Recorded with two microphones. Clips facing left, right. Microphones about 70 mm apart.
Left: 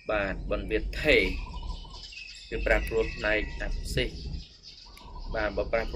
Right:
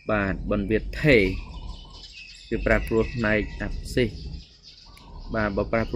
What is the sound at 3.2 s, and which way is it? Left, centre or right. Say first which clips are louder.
Speech: right 4 dB; right.